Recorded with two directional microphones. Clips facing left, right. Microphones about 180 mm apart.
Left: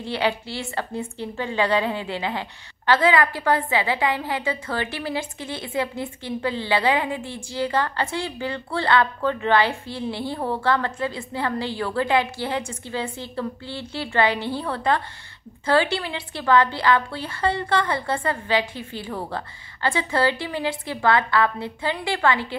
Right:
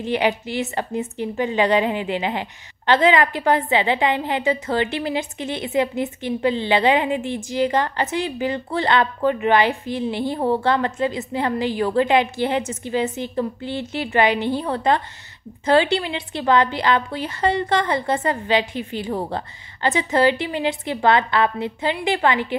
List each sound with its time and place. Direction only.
0.0 s a woman's voice: 15° right (ahead or behind)